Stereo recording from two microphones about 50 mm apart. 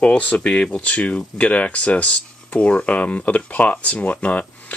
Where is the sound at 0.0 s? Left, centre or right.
Left.